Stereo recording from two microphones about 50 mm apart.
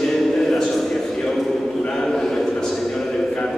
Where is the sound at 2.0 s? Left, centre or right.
Centre.